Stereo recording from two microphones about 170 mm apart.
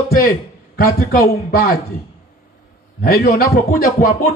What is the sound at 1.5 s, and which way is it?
Speech, 55° left (ahead or behind).